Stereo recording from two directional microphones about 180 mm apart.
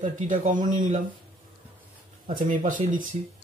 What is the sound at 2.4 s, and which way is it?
Speech, 45° right (ahead or behind).